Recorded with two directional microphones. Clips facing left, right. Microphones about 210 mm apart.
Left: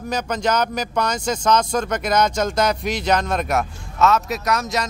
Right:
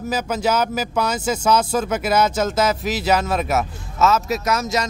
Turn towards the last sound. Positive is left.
turn(degrees=0)  # may be behind; listen again after turning